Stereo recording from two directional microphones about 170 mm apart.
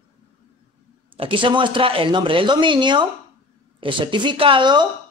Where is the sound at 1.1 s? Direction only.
30° right (ahead or behind).